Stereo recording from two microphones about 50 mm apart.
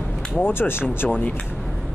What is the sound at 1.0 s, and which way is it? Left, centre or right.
Speech, left.